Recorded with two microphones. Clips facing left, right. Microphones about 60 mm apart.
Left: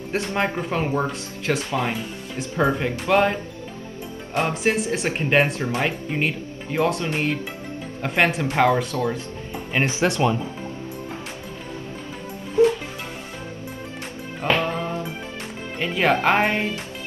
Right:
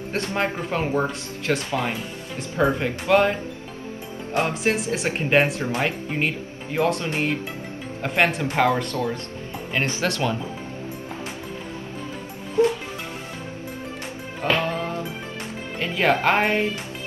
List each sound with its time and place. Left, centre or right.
0.1 s speech: centre
9.7 s speech: centre
14.4 s music: centre
15.8 s speech: centre